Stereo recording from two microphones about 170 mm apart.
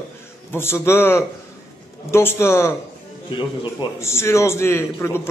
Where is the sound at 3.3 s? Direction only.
30° left (ahead or behind).